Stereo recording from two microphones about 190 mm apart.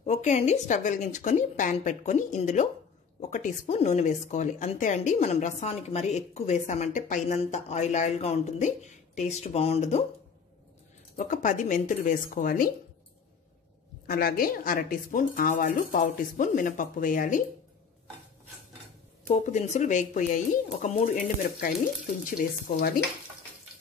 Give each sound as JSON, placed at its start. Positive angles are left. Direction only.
{"t": 0.0, "sound": "a woman's voice", "side_deg": 35}
{"t": 11.1, "sound": "speech", "side_deg": 40}
{"t": 14.0, "sound": "speech", "side_deg": 50}
{"t": 19.2, "sound": "speech", "side_deg": 40}